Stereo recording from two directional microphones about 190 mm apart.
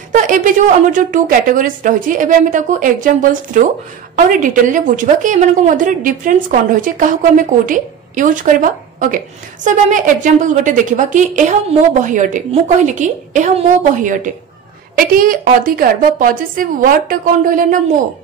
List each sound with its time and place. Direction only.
0.1 s a woman's voice: 45° right (ahead or behind)